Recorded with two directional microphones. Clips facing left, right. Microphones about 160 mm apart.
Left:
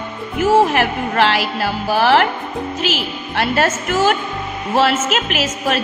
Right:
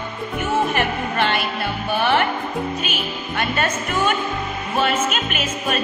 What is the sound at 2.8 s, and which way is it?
Music, 80° left.